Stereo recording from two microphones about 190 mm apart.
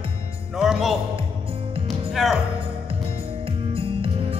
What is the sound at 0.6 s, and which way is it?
Music, centre (ahead or behind).